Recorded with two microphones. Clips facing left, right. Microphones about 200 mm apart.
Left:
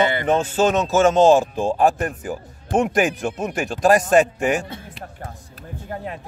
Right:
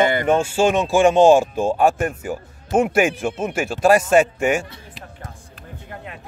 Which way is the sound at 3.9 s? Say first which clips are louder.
Right 1 dB; 40° left (ahead or behind).